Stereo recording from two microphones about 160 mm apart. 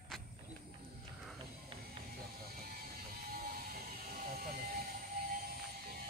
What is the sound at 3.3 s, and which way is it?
Music, 65° right (ahead or behind).